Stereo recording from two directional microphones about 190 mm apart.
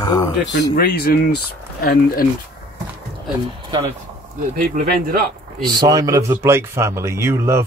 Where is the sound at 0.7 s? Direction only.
55° left (ahead or behind).